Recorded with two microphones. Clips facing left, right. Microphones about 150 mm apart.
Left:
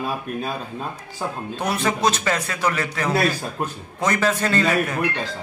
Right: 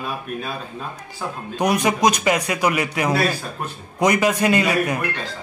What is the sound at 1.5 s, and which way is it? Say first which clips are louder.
A man's voice: right 5 dB; 15° right (ahead or behind).